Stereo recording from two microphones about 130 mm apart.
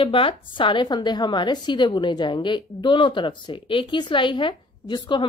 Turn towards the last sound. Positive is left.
turn(degrees=35)  # may be behind; listen again after turning